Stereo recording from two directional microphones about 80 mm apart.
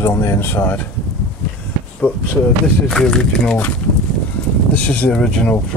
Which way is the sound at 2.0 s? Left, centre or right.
Left.